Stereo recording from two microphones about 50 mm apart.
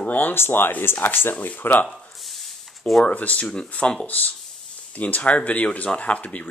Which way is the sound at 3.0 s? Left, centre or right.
Left.